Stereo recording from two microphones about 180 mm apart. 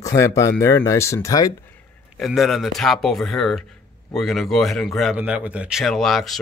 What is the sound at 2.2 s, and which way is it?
A man's voice, centre (ahead or behind).